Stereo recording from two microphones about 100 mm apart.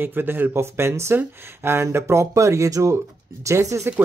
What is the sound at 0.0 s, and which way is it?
Speech, 20° right (ahead or behind).